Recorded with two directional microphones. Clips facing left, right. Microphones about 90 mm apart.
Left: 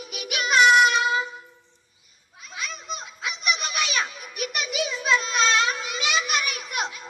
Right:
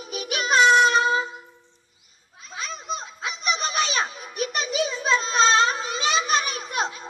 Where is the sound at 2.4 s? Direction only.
35° right (ahead or behind).